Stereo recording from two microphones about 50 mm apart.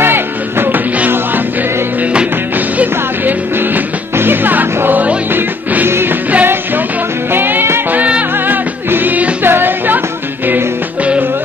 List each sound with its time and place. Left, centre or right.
0.0 s music: right
2.8 s music: right
5.9 s music: right